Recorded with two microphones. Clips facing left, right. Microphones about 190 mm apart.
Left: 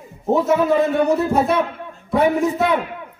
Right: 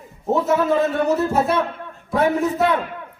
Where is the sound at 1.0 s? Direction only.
5° right (ahead or behind).